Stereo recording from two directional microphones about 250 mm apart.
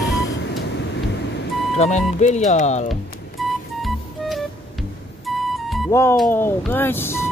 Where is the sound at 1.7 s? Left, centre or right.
Left.